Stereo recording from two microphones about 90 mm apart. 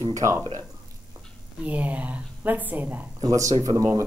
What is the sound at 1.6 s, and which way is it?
Speech, 15° right (ahead or behind).